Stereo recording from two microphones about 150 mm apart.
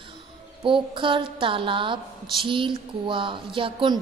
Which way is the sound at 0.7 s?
35° right (ahead or behind).